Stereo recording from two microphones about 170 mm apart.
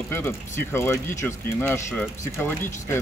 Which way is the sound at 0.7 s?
15° left (ahead or behind).